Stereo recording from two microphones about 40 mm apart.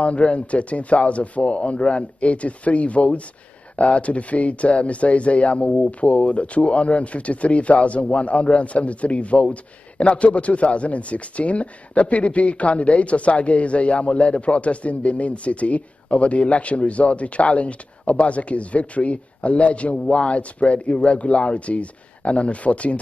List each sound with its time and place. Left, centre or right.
0.0 s speech: left